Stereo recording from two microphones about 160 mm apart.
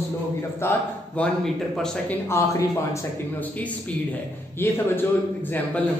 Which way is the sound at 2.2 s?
20° left (ahead or behind).